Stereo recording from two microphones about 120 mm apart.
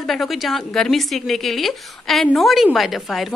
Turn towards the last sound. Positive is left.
turn(degrees=0)  # may be behind; listen again after turning